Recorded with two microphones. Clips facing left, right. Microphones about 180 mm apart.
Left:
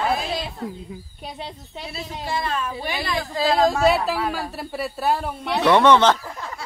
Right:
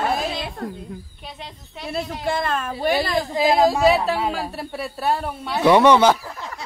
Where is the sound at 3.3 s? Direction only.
15° right (ahead or behind).